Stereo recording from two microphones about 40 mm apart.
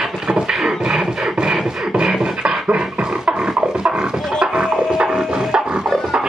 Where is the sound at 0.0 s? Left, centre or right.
Centre.